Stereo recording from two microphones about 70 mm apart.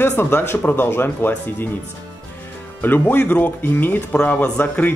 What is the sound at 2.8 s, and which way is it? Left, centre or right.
Speech, left.